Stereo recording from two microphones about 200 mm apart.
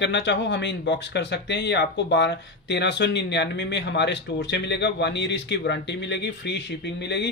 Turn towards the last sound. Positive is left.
turn(degrees=60)  # may be behind; listen again after turning